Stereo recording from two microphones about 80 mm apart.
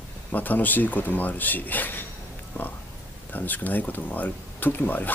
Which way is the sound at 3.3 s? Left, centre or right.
Left.